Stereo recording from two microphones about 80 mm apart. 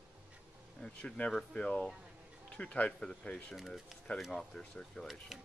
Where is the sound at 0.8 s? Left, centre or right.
Centre.